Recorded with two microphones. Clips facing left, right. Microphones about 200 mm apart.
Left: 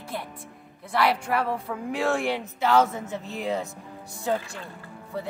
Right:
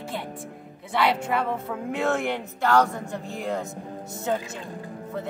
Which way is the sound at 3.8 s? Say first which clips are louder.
Right 6 dB; 45° right (ahead or behind).